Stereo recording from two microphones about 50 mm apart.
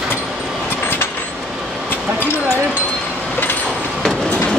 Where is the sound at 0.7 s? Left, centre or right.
Left.